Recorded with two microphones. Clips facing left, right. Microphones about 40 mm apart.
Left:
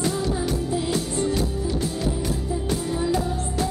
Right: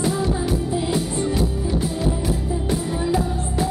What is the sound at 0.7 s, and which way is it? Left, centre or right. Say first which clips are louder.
Music: right 2 dB; centre.